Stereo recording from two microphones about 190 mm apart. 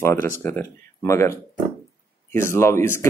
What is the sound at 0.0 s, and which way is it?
Speech, 15° left (ahead or behind).